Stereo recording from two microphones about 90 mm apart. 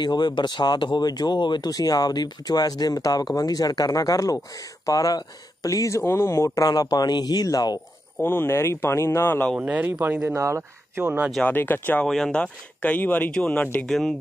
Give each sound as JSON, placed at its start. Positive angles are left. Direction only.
{"t": 0.0, "sound": "speech", "side_deg": 50}
{"t": 6.6, "sound": "speech", "side_deg": 45}
{"t": 8.2, "sound": "speech", "side_deg": 25}
{"t": 9.6, "sound": "speech", "side_deg": -20}
{"t": 10.3, "sound": "speech", "side_deg": -35}
{"t": 11.4, "sound": "speech", "side_deg": 20}
{"t": 12.0, "sound": "speech", "side_deg": 10}